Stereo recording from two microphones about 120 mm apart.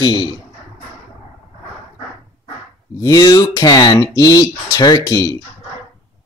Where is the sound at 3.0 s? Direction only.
30° left (ahead or behind).